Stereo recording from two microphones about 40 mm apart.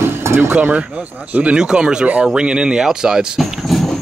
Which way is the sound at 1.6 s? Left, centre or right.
Centre.